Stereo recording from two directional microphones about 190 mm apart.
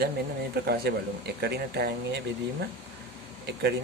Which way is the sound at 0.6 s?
55° right (ahead or behind).